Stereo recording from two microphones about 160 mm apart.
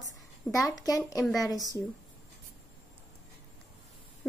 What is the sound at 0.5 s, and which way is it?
Speech, 20° left (ahead or behind).